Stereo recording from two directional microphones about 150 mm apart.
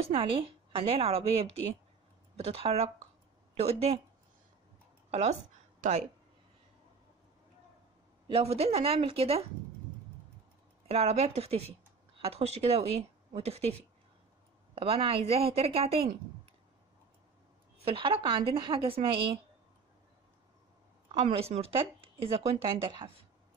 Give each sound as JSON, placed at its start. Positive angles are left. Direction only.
{"t": 0.0, "sound": "a woman's voice", "side_deg": -40}
{"t": 5.1, "sound": "speech", "side_deg": -45}
{"t": 8.3, "sound": "speech", "side_deg": -40}
{"t": 10.9, "sound": "a woman's voice", "side_deg": -40}
{"t": 17.7, "sound": "speech", "side_deg": -40}
{"t": 21.1, "sound": "speech", "side_deg": -40}